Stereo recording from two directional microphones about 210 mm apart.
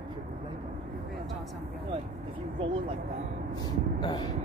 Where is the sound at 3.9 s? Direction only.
20° left (ahead or behind).